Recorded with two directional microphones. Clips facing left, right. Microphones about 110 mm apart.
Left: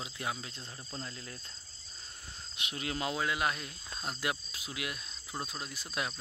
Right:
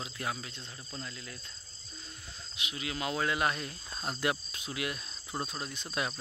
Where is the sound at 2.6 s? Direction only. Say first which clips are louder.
Left 1 dB; 45° left (ahead or behind).